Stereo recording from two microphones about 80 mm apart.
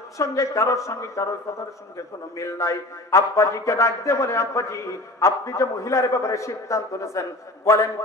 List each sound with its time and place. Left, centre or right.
0.2 s a man's voice: left